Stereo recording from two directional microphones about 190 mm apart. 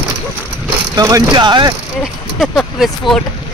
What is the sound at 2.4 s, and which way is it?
Speech, centre (ahead or behind).